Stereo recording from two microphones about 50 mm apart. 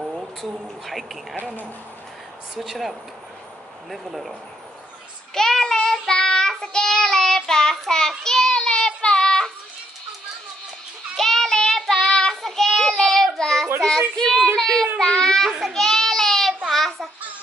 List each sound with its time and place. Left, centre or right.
0.0 s a sound: centre
2.5 s a woman's voice: centre
5.3 s child singing: centre
11.1 s child singing: centre